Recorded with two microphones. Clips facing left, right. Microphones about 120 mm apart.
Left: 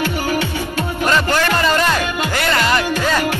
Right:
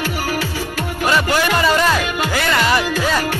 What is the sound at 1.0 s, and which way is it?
Music, 10° right (ahead or behind).